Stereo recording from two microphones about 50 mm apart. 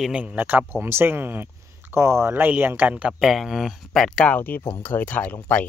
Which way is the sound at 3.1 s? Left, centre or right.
Centre.